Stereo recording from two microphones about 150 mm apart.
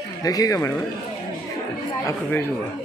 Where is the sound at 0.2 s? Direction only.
25° left (ahead or behind).